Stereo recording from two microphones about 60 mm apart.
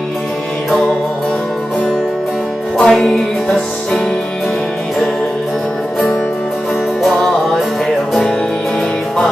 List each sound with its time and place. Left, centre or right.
2.8 s music: centre
7.0 s music: centre